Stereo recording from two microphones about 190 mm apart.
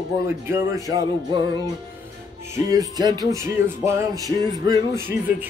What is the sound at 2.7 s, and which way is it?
Music, 20° right (ahead or behind).